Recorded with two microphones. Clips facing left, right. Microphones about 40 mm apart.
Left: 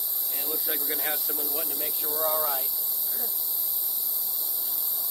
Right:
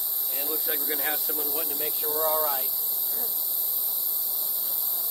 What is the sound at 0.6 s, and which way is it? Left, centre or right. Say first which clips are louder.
Speech: right 1 dB; right.